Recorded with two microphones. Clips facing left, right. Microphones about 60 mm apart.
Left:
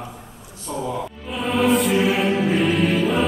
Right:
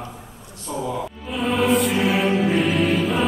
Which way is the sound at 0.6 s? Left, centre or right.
Centre.